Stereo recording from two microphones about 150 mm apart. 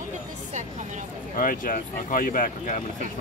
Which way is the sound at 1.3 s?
65° left (ahead or behind).